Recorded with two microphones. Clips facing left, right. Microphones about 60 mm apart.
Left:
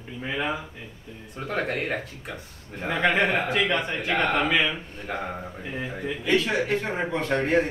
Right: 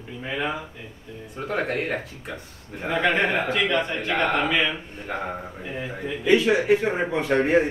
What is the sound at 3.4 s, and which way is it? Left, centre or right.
Speech, centre.